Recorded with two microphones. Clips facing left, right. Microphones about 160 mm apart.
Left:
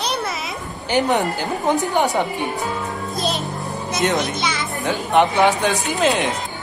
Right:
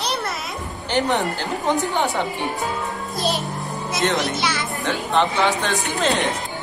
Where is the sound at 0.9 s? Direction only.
15° left (ahead or behind).